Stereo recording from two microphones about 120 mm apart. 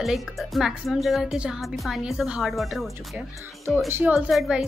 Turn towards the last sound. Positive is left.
turn(degrees=-5)  # may be behind; listen again after turning